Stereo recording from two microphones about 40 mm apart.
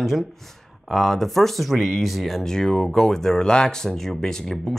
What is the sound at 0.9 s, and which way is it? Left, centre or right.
Speech, centre.